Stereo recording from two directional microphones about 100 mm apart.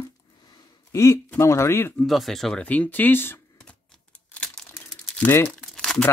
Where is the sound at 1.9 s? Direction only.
Centre (ahead or behind).